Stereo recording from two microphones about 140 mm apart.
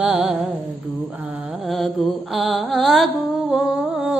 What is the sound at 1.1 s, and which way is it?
Mantra, 5° right (ahead or behind).